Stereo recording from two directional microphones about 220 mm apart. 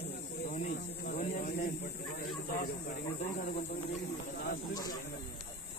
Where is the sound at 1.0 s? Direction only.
40° left (ahead or behind).